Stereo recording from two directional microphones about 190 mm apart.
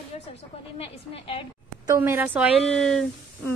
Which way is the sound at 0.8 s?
30° left (ahead or behind).